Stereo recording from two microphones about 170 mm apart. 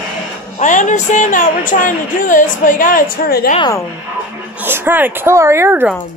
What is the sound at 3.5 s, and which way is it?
Speech, 25° left (ahead or behind).